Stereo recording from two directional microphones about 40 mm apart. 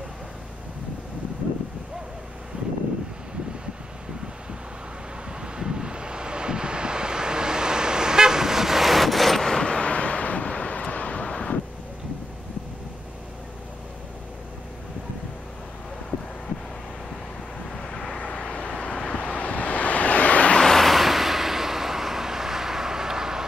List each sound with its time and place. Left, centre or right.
2.5 s vehicle: right
5.4 s vehicle: centre
9.7 s vehicle: left
17.6 s vehicle: centre
19.3 s vehicle: left
20.7 s vehicle: centre